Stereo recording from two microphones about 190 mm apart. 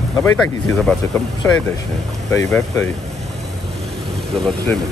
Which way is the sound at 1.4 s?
10° left (ahead or behind).